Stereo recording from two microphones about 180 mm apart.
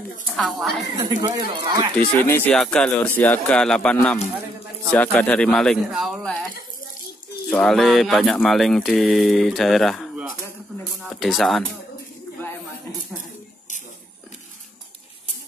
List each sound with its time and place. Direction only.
0.4 s speech: centre (ahead or behind)
1.2 s speech: 25° right (ahead or behind)
2.0 s speech: 10° left (ahead or behind)
7.4 s speech: centre (ahead or behind)